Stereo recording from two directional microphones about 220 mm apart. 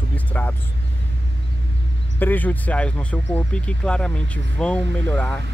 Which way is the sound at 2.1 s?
10° left (ahead or behind).